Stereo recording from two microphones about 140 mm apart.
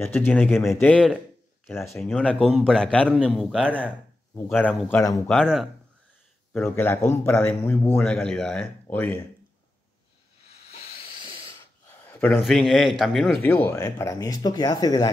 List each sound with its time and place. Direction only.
0.0 s speech: 15° left (ahead or behind)
5.0 s speech: 25° left (ahead or behind)
5.3 s speech: centre (ahead or behind)
6.5 s speech: 15° left (ahead or behind)
10.7 s hiss: 45° left (ahead or behind)
12.3 s speech: centre (ahead or behind); by 15.0 s 30° left (ahead or behind)